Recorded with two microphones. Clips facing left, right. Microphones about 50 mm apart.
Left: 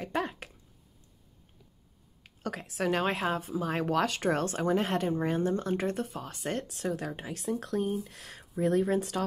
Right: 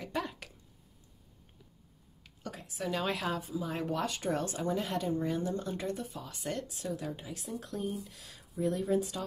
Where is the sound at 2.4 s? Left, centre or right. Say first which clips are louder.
Left 7 dB; left.